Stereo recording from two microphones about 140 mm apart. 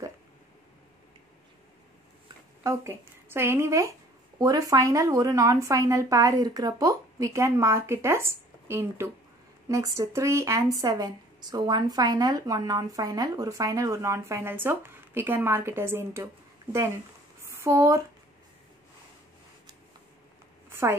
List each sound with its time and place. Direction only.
2.6 s a woman's voice: 20° right (ahead or behind)
17.6 s speech: 20° right (ahead or behind)